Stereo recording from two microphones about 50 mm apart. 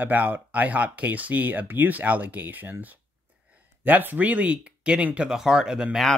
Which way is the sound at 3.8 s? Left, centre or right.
Right.